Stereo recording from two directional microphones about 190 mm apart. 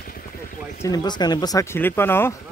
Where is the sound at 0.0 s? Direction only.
50° left (ahead or behind).